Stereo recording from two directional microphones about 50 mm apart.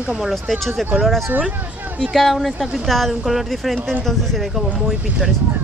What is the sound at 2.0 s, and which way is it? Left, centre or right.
Speech, centre.